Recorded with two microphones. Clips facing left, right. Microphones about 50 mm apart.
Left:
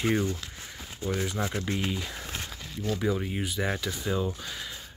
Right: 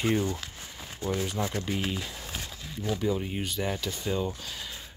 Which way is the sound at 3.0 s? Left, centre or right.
Left.